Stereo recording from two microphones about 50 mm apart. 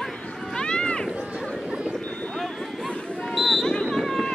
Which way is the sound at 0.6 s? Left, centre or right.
Centre.